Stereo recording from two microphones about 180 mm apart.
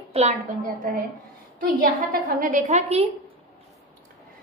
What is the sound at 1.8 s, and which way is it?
A woman's voice, 55° right (ahead or behind).